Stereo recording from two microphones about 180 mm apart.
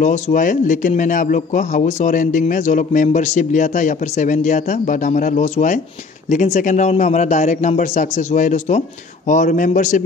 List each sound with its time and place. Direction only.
0.0 s speech: 45° left (ahead or behind)